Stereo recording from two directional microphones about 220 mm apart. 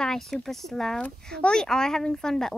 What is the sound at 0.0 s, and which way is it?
Speech, centre (ahead or behind).